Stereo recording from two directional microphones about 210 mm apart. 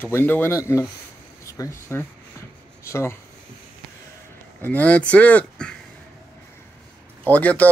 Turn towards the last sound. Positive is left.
turn(degrees=5)  # may be behind; listen again after turning